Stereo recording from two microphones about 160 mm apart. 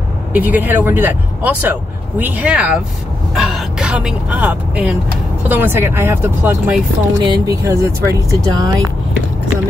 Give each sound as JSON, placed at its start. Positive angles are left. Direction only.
{"t": 0.3, "sound": "speech", "side_deg": -10}